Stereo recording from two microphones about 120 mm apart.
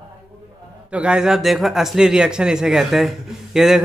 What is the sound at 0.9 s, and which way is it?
Speech, 5° right (ahead or behind).